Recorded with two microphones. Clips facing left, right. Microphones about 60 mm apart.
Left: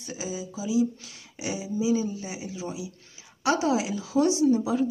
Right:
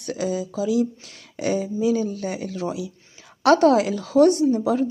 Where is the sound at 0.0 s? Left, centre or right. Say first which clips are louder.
Right 9 dB; right.